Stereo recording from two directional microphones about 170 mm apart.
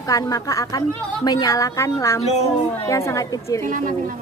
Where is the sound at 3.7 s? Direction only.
50° right (ahead or behind).